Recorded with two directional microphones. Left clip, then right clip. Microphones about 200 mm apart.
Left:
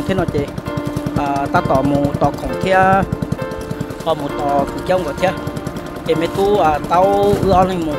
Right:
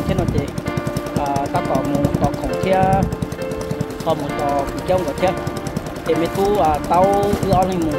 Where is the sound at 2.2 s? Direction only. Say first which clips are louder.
Left 2 dB; 25° left (ahead or behind).